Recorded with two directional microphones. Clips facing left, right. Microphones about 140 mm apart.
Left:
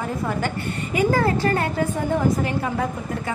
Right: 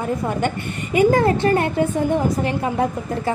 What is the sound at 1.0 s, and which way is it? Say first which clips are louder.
A woman's voice: right 5 dB; 20° right (ahead or behind).